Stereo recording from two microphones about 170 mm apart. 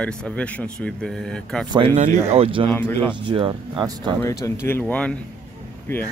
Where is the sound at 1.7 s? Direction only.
30° right (ahead or behind).